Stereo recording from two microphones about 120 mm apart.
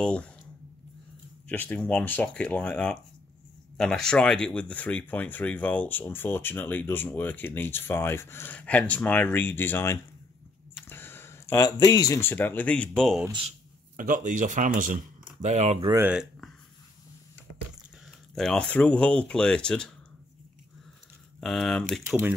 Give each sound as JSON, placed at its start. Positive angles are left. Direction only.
{"t": 0.0, "sound": "speech", "side_deg": 10}
{"t": 1.5, "sound": "speech", "side_deg": 15}
{"t": 10.9, "sound": "a sound", "side_deg": 20}
{"t": 12.2, "sound": "speech", "side_deg": 15}
{"t": 14.1, "sound": "speech", "side_deg": -90}
{"t": 15.4, "sound": "speech", "side_deg": -75}
{"t": 16.1, "sound": "a sound", "side_deg": 0}
{"t": 18.0, "sound": "speech", "side_deg": 0}
{"t": 21.4, "sound": "speech", "side_deg": 5}